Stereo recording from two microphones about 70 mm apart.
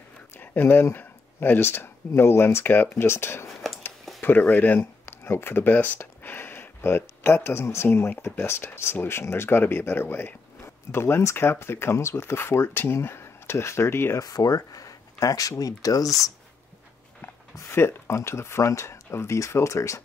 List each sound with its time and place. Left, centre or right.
0.4 s speech: left
14.2 s speech: left
17.6 s speech: left